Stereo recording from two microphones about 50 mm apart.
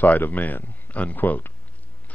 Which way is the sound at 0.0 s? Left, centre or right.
Left.